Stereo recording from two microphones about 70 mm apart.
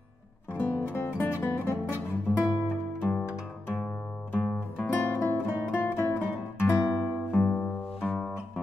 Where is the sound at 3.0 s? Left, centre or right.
Centre; by 5.4 s left.